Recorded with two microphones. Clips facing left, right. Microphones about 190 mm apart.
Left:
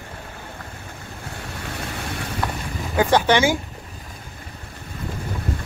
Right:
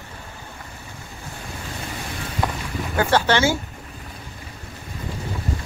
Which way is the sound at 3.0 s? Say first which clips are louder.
Left 2 dB; 15° left (ahead or behind).